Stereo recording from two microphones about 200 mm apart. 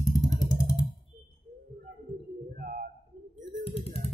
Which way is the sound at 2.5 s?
45° right (ahead or behind).